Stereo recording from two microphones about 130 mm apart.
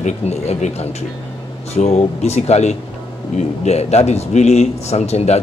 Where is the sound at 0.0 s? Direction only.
60° left (ahead or behind).